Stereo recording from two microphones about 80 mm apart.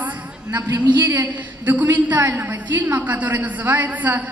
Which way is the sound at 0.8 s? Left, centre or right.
Right.